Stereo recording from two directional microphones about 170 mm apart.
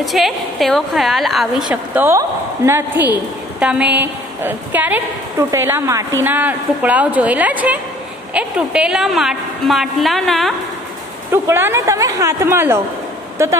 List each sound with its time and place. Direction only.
0.0 s a woman's voice: centre (ahead or behind)
11.3 s a woman's voice: 15° right (ahead or behind)